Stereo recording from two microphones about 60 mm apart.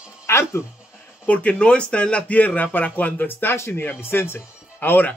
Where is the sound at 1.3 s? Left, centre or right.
Left.